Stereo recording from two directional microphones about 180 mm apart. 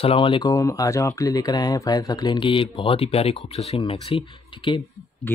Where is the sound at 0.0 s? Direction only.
30° left (ahead or behind).